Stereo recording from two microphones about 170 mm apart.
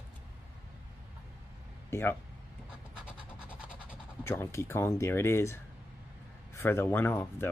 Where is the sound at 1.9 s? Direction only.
15° left (ahead or behind).